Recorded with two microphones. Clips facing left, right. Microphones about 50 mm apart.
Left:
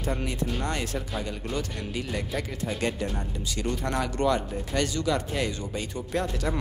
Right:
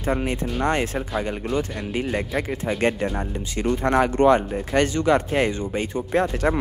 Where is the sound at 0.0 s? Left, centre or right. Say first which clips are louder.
Right 6 dB; right.